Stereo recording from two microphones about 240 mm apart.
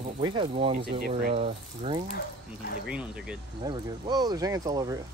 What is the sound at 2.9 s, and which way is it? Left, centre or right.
Speech, centre.